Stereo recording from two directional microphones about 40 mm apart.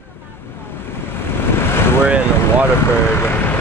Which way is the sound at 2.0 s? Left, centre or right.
Right.